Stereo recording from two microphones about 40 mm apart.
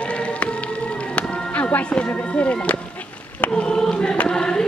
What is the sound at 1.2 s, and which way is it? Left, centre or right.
Music, left.